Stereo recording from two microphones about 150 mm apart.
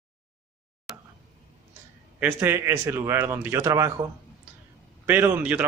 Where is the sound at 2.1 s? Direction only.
15° right (ahead or behind).